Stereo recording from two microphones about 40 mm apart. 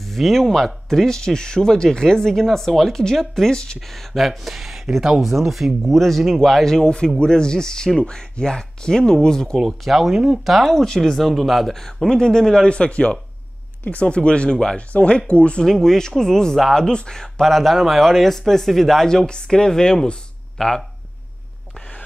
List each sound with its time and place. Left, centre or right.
0.0 s speech: centre
3.5 s speech: centre
3.8 s speech: centre
9.7 s speech: centre
10.6 s speech: centre
12.1 s speech: centre
12.6 s speech: left
15.6 s speech: centre
19.2 s speech: centre